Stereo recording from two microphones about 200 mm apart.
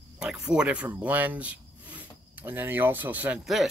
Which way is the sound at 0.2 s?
5° right (ahead or behind).